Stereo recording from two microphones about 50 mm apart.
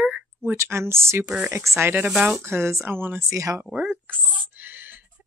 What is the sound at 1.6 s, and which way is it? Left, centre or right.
Speech, right.